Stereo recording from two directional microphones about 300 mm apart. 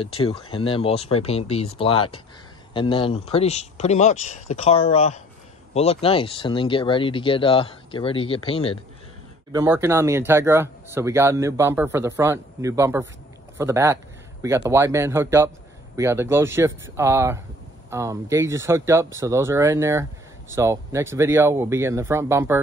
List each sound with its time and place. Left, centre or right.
0.0 s speech: centre
9.5 s speech: centre